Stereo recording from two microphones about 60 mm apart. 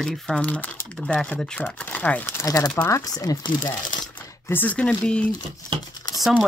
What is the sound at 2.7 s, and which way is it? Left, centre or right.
Speech, left.